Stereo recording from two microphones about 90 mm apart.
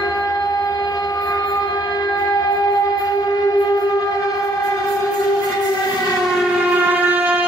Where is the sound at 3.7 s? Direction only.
40° left (ahead or behind).